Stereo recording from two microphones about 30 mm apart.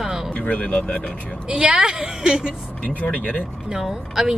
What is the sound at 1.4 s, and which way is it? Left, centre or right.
Speech, right.